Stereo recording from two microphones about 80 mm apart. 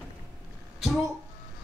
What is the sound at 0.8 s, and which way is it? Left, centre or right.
Speech, centre.